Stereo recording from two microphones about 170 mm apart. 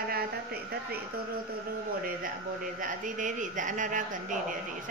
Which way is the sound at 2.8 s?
50° right (ahead or behind).